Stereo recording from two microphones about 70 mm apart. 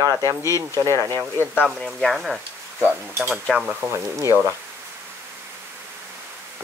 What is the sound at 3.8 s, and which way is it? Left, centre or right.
Speech, right.